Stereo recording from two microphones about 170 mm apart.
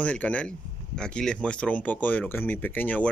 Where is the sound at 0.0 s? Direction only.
10° left (ahead or behind).